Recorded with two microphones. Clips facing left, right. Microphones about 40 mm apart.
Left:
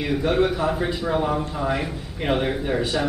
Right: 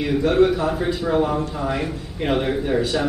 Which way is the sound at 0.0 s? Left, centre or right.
Centre.